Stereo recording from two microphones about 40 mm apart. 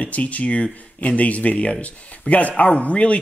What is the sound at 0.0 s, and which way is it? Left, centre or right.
Speech, left.